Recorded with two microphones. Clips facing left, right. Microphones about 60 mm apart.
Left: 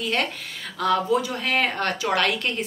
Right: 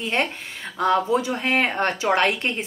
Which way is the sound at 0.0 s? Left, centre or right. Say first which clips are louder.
Right 1 dB; right.